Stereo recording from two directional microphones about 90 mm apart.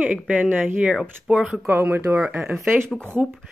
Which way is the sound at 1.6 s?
25° right (ahead or behind).